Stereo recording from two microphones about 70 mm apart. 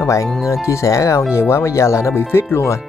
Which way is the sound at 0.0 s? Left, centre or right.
Left.